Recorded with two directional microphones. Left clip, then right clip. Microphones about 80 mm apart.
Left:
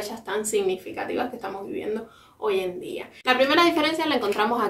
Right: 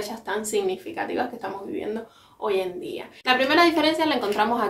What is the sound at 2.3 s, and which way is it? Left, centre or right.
A woman's voice, right.